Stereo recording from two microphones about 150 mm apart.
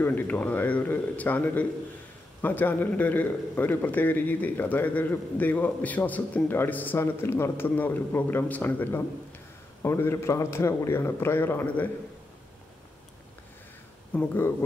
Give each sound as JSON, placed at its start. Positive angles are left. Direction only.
{"t": 0.0, "sound": "a man's voice", "side_deg": 10}
{"t": 14.1, "sound": "a man's voice", "side_deg": 15}